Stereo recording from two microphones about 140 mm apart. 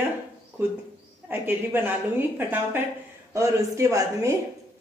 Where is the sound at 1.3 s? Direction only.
15° right (ahead or behind).